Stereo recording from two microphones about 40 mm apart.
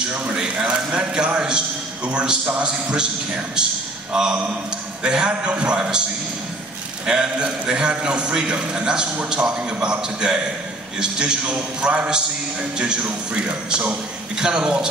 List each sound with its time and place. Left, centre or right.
0.3 s a man's voice: centre
4.1 s a man's voice: right
7.1 s a man's voice: right
11.8 s a man's voice: right